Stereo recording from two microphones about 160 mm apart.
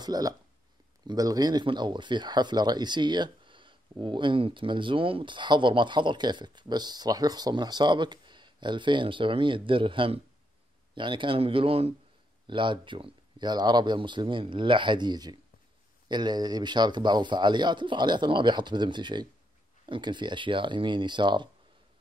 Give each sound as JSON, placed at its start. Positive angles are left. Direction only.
{"t": 0.0, "sound": "speech", "side_deg": -25}